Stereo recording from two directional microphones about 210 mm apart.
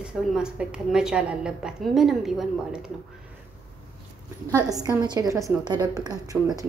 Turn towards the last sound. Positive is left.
turn(degrees=-20)  # may be behind; listen again after turning